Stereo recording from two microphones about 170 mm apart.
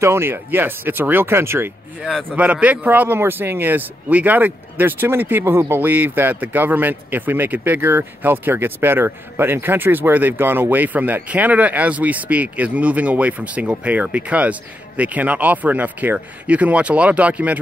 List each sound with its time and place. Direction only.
0.0 s speech: 15° right (ahead or behind)